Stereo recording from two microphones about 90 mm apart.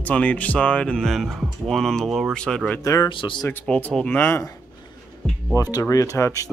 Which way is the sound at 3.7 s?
15° left (ahead or behind).